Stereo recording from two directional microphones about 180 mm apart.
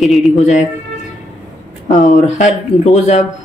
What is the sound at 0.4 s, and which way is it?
Speech, 40° left (ahead or behind).